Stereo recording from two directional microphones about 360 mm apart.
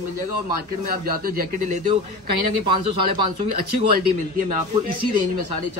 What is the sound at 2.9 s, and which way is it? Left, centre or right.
Speech, right.